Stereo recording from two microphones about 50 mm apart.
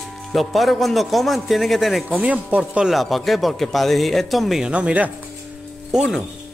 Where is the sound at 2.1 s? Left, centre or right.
Right.